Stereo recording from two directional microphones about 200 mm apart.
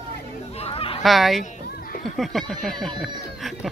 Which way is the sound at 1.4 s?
40° left (ahead or behind).